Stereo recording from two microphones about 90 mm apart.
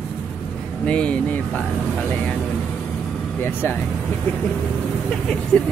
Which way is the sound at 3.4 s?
25° left (ahead or behind).